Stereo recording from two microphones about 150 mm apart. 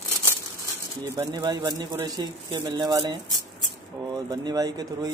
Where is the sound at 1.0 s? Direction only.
25° right (ahead or behind).